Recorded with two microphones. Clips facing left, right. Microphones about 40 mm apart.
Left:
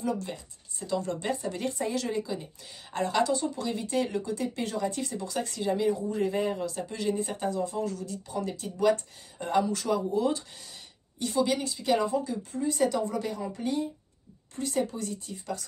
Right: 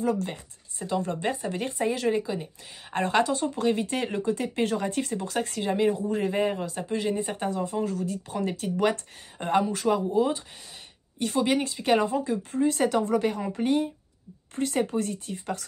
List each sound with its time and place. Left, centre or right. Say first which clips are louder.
0.0 s speech: right 4 dB; right
2.9 s speech: right 2 dB; right
11.1 s speech: right 2 dB; right